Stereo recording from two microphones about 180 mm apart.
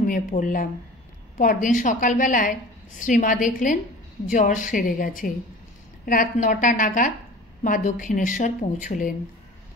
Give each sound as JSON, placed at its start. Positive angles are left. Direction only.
{"t": 0.0, "sound": "a woman's voice", "side_deg": 50}